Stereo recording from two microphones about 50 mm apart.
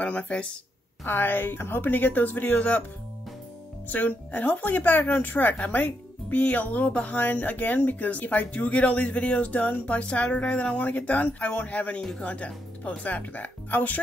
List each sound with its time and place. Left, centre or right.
0.0 s speech: left
1.0 s speech: left
3.9 s speech: left